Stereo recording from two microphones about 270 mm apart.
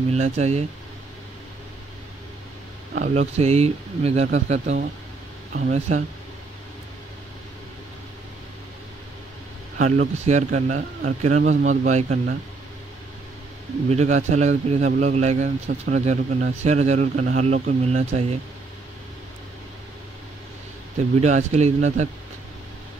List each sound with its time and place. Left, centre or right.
0.1 s speech: right
2.9 s speech: right
9.8 s speech: right
13.8 s speech: right
21.2 s speech: right